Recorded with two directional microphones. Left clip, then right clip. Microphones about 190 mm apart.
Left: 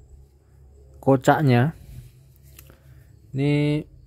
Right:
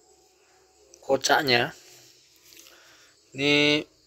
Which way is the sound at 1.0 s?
15° left (ahead or behind).